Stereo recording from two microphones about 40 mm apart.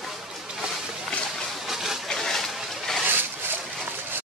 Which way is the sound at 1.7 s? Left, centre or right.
Centre.